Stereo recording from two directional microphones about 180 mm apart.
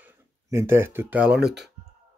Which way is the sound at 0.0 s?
15° right (ahead or behind).